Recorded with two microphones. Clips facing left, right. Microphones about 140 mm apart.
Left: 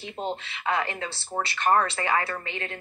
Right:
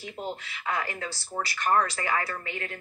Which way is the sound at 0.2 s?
25° left (ahead or behind).